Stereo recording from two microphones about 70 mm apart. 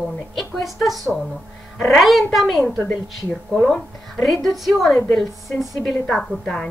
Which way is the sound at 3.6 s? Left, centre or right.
Centre.